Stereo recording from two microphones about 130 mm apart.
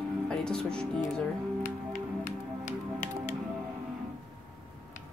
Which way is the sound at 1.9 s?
75° left (ahead or behind).